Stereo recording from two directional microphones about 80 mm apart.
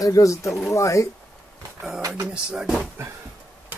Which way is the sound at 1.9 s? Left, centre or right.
Right.